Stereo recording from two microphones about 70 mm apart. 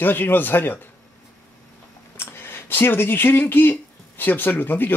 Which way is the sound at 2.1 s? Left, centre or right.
Left.